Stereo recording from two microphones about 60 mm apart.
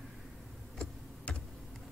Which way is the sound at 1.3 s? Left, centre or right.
Left.